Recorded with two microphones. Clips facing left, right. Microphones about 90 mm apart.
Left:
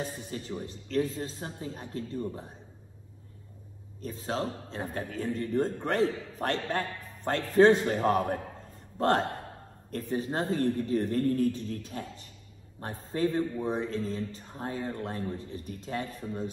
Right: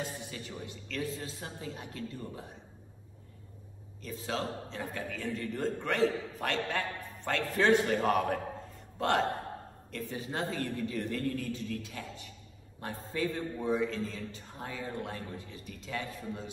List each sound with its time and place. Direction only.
0.0 s speech: 35° left (ahead or behind)
4.0 s a man's voice: 40° left (ahead or behind)